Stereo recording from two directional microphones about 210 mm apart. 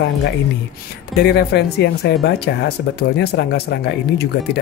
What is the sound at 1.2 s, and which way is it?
Speech, 50° left (ahead or behind).